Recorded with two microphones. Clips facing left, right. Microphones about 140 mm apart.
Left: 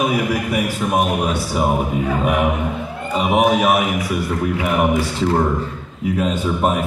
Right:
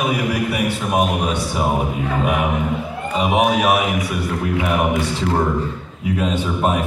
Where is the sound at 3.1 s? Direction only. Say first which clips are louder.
Left 1 dB; centre (ahead or behind).